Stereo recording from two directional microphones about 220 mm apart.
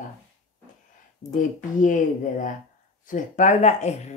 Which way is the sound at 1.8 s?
35° left (ahead or behind).